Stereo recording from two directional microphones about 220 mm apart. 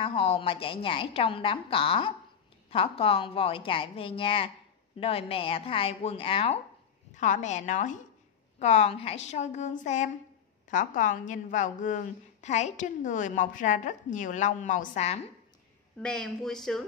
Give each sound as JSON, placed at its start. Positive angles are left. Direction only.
{"t": 0.0, "sound": "a woman's voice", "side_deg": 25}
{"t": 16.0, "sound": "speech", "side_deg": 5}